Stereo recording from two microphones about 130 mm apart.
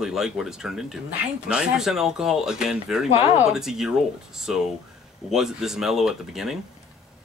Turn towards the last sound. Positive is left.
turn(degrees=-5)  # may be behind; listen again after turning